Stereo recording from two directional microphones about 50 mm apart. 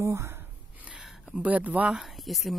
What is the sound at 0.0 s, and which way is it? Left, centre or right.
Speech, right.